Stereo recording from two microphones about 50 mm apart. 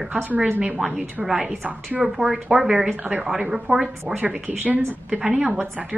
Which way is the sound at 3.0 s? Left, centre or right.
Right.